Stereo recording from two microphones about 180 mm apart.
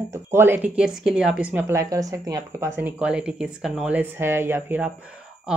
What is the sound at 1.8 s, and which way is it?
Speech, 20° right (ahead or behind).